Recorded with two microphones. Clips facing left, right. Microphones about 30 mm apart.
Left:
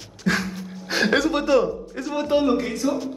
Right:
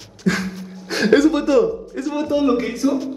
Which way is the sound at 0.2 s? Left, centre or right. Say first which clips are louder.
Right 2 dB; centre.